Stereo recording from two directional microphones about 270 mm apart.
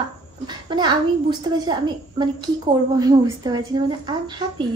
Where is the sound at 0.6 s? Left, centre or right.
Centre.